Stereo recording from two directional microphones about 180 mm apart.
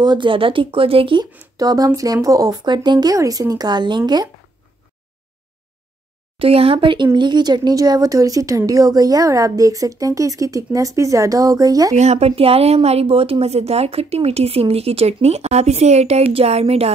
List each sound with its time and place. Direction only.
0.0 s speech: 25° right (ahead or behind)
6.3 s speech: 30° right (ahead or behind)
11.9 s a woman's voice: 40° right (ahead or behind)